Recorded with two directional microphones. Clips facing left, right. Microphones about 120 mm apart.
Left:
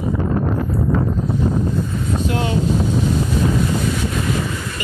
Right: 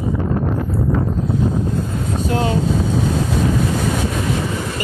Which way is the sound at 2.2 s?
30° right (ahead or behind).